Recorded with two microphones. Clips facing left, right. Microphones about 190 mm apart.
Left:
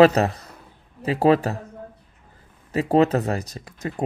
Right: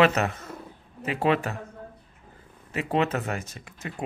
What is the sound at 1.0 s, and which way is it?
Speech, 35° left (ahead or behind).